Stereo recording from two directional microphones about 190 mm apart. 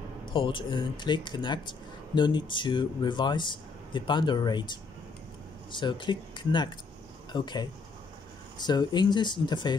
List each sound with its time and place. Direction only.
0.2 s speech: 25° left (ahead or behind)